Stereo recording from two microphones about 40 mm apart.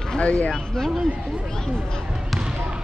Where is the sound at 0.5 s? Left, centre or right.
Centre.